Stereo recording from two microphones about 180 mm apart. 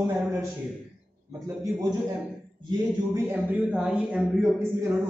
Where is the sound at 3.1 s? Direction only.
10° right (ahead or behind).